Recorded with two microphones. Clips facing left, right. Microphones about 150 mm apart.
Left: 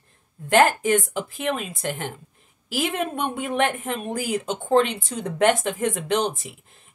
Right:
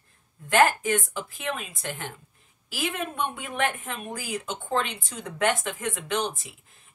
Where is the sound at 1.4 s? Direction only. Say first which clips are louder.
Left 6 dB; 35° left (ahead or behind).